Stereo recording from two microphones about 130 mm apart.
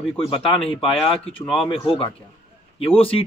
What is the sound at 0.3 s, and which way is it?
Speech, 45° left (ahead or behind).